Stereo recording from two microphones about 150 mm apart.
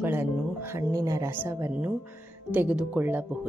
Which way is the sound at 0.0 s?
15° right (ahead or behind).